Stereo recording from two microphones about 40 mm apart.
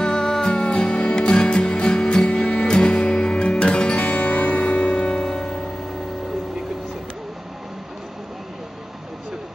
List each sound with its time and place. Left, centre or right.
0.0 s music: centre
5.1 s music: centre